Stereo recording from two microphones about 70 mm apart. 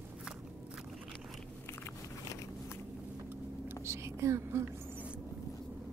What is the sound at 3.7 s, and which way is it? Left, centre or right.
Whispering, right.